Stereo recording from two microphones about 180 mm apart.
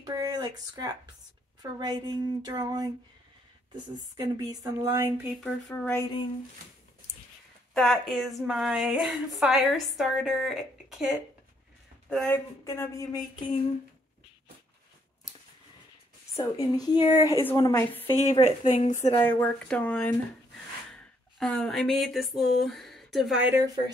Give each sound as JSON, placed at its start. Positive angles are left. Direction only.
{"t": 0.0, "sound": "speech", "side_deg": -20}
{"t": 5.4, "sound": "speech", "side_deg": 10}
{"t": 7.7, "sound": "a woman's voice", "side_deg": 5}
{"t": 12.6, "sound": "speech", "side_deg": 15}
{"t": 16.3, "sound": "a woman's voice", "side_deg": 20}
{"t": 18.4, "sound": "speech", "side_deg": 40}
{"t": 19.1, "sound": "speech", "side_deg": 10}
{"t": 20.9, "sound": "a sound", "side_deg": 0}